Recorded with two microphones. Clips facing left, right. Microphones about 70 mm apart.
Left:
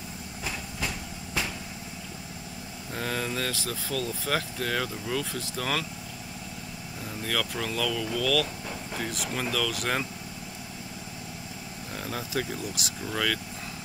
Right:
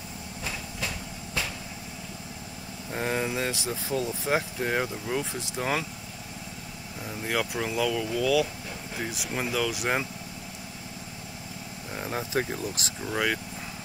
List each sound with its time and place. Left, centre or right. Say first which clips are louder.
0.5 s train: left 1 dB; centre
2.9 s speech: right 3 dB; right
7.2 s speech: right 2 dB; centre
12.0 s speech: right 3 dB; right
13.0 s speech: right 2 dB; centre